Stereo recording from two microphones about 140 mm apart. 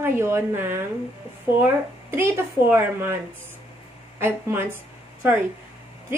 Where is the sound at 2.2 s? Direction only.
15° right (ahead or behind).